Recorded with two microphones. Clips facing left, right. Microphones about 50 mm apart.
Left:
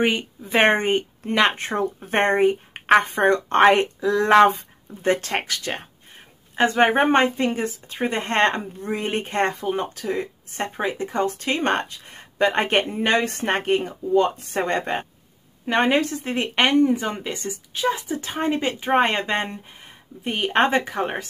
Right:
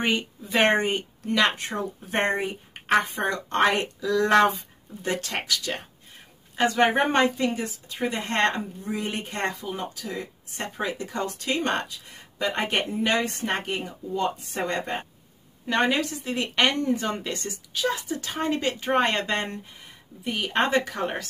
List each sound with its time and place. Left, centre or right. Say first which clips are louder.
0.0 s speech: left 4 dB; centre
0.5 s speech: left 3 dB; left
10.8 s speech: left 5 dB; left
15.6 s speech: left 4 dB; left
16.7 s speech: left 7 dB; centre
20.2 s speech: left 5 dB; left